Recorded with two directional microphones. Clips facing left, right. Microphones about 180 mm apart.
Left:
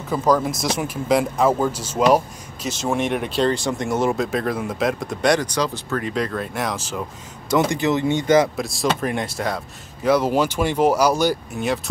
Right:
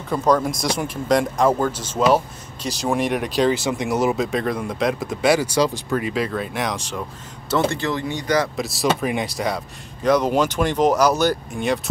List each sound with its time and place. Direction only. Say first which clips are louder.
0.1 s speech: even; 5° left (ahead or behind)
2.8 s speech: right 1 dB; centre (ahead or behind)
7.5 s speech: left 2 dB; 15° left (ahead or behind)
8.5 s speech: right 1 dB; centre (ahead or behind)